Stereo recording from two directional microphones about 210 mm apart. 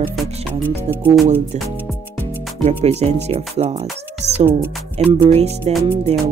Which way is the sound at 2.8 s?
30° right (ahead or behind).